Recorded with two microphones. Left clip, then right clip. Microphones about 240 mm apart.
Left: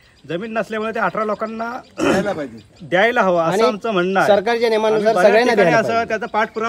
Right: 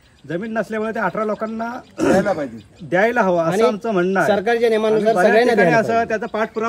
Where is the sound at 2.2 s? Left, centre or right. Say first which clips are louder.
Right 2 dB; centre.